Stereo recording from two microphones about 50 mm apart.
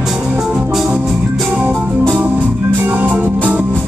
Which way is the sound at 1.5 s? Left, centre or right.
Right.